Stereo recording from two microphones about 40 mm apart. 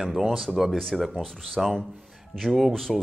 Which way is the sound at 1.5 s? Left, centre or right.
Centre.